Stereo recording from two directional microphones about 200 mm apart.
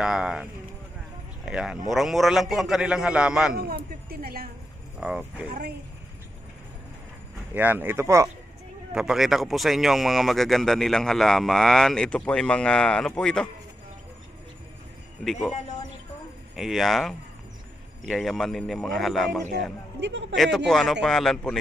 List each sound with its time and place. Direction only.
0.0 s speech: 5° right (ahead or behind)
3.5 s speech: 50° right (ahead or behind)
5.0 s speech: 5° right (ahead or behind)
5.5 s speech: 50° right (ahead or behind)
7.5 s speech: 10° right (ahead or behind)
8.9 s speech: 5° right (ahead or behind)
15.2 s speech: centre (ahead or behind)
16.5 s speech: centre (ahead or behind)
20.0 s a man's voice: 60° right (ahead or behind)
20.3 s speech: centre (ahead or behind)